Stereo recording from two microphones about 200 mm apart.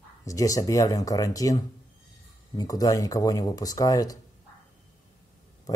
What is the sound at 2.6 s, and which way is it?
Speech, 20° left (ahead or behind).